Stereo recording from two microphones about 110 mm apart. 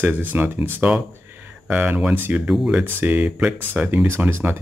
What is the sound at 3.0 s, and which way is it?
Speech, 15° right (ahead or behind).